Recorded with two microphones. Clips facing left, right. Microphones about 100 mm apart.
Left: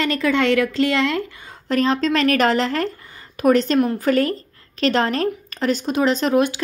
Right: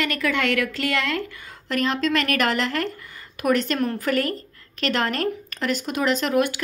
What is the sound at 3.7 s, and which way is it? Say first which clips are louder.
Speech: left 6 dB; 15° left (ahead or behind).